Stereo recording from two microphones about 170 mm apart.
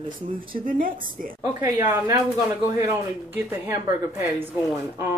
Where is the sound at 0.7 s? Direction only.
55° right (ahead or behind).